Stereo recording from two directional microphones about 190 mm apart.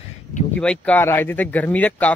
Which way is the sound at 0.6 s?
5° left (ahead or behind).